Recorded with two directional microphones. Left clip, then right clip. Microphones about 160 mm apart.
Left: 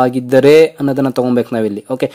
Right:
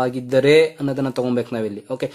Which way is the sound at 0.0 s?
40° left (ahead or behind).